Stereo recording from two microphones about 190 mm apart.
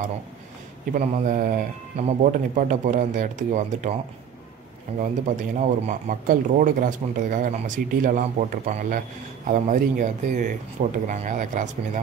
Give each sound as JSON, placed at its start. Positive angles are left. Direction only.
{"t": 0.9, "sound": "speech", "side_deg": -45}
{"t": 4.9, "sound": "speech", "side_deg": -40}